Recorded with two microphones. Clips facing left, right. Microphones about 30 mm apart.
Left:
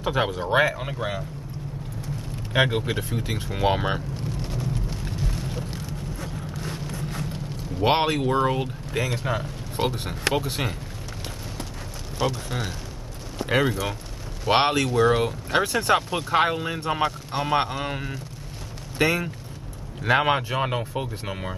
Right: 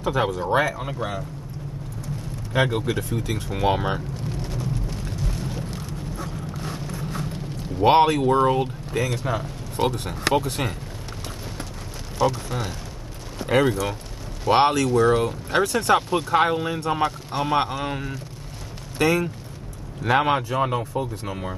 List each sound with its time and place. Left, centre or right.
0.0 s speech: centre
0.5 s speech: left
0.7 s speech: centre
2.5 s speech: centre
3.4 s speech: centre
5.0 s a sound: centre
7.8 s speech: centre
12.2 s speech: centre
14.5 s speech: left